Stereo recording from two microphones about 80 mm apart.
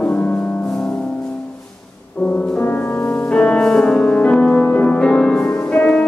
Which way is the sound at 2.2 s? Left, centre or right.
Centre.